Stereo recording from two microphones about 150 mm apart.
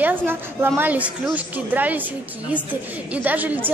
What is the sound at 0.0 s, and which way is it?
A woman's voice, 15° right (ahead or behind).